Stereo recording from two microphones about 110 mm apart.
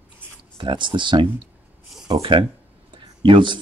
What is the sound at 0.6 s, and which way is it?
Speech, 45° right (ahead or behind).